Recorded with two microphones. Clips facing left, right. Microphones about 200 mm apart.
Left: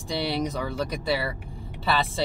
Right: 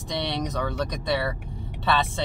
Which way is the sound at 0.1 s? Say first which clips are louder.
Left 2 dB; 5° left (ahead or behind).